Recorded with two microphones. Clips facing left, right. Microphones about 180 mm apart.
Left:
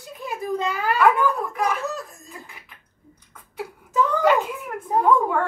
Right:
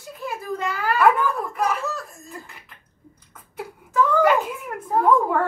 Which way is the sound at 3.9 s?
20° left (ahead or behind).